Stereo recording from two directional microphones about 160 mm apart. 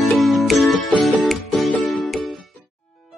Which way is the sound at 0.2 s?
Centre (ahead or behind).